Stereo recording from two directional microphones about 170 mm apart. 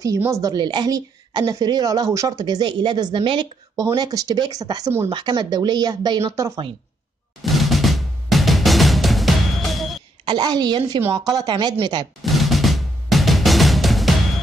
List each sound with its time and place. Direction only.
0.0 s a woman's voice: 20° right (ahead or behind)
7.4 s drum: centre (ahead or behind)
10.2 s a woman's voice: 25° right (ahead or behind)
12.2 s music: centre (ahead or behind)